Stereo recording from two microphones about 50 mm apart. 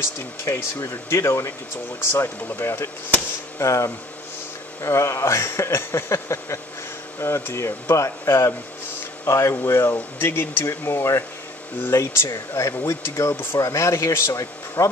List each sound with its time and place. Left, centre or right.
0.7 s a man's voice: left
2.0 s speech: left
3.5 s speech: left
7.2 s speech: left
13.7 s a man's voice: left